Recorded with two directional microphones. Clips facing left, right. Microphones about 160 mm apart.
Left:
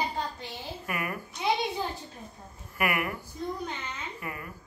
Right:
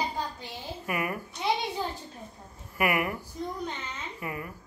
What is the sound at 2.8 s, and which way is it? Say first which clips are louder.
Speech: right 2 dB; 20° right (ahead or behind).